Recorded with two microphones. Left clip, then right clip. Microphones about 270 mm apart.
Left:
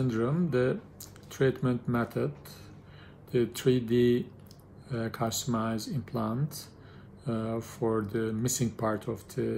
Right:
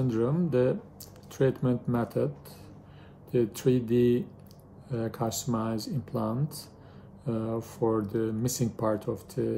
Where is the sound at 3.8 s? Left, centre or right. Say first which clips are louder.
Right 1 dB; right.